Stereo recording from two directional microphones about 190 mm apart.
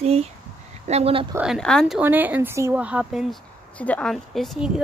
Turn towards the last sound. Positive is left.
turn(degrees=0)  # may be behind; listen again after turning